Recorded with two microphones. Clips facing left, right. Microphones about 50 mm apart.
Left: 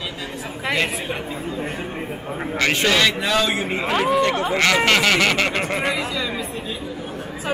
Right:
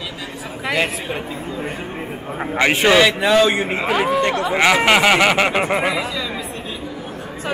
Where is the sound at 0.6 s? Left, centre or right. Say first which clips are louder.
Right 2 dB; centre.